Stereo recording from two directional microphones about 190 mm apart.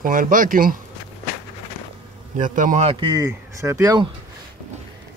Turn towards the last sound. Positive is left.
turn(degrees=-20)  # may be behind; listen again after turning